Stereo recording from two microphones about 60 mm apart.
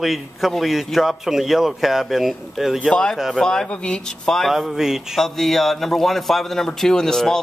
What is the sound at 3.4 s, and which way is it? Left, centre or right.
Speech, centre.